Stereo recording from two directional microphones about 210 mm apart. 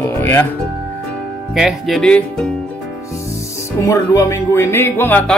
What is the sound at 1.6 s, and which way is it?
Speech, centre (ahead or behind).